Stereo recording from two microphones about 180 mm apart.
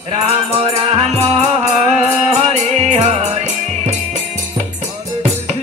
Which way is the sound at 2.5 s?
40° right (ahead or behind).